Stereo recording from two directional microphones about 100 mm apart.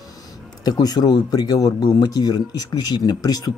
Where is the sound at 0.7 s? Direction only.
40° left (ahead or behind).